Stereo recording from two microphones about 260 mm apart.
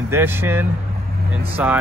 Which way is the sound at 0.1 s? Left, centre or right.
Centre.